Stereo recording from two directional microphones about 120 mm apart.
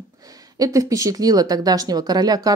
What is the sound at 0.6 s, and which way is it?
Speech, 30° right (ahead or behind).